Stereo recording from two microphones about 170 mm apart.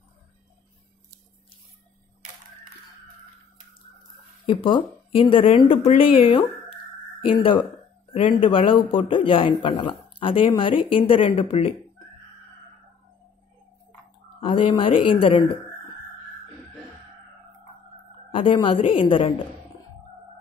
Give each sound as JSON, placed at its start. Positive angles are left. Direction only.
{"t": 4.5, "sound": "a woman's voice", "side_deg": 30}
{"t": 14.4, "sound": "a woman's voice", "side_deg": 30}
{"t": 18.3, "sound": "speech", "side_deg": 30}